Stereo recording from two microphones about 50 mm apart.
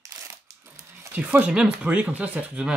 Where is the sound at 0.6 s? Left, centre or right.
Right.